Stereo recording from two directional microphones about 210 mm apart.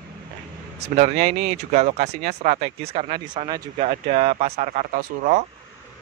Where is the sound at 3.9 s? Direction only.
35° right (ahead or behind).